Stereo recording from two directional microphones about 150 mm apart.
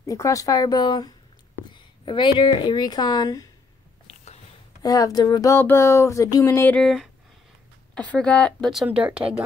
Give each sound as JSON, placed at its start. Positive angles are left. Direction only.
{"t": 0.0, "sound": "speech", "side_deg": 20}
{"t": 4.1, "sound": "a sound", "side_deg": 45}
{"t": 4.8, "sound": "speech", "side_deg": 25}
{"t": 6.8, "sound": "speech", "side_deg": 0}
{"t": 8.8, "sound": "speech", "side_deg": -10}